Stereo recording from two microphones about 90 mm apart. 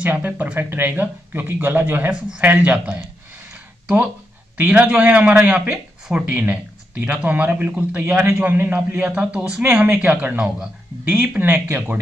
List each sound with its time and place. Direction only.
0.0 s a man's voice: 20° right (ahead or behind)